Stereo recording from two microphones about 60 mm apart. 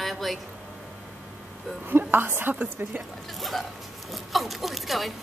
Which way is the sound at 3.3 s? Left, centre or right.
Centre.